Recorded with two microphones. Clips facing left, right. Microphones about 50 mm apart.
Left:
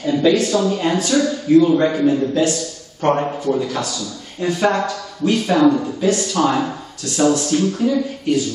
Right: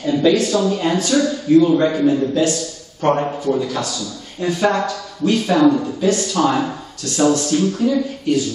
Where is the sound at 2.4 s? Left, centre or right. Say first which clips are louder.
Even; left.